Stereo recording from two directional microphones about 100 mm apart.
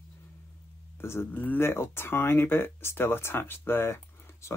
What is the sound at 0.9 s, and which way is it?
Speech, 25° left (ahead or behind).